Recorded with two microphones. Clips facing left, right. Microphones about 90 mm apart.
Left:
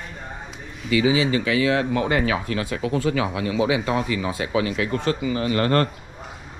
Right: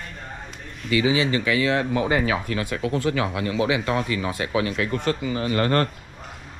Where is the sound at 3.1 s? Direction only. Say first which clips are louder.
Left 1 dB; 45° right (ahead or behind).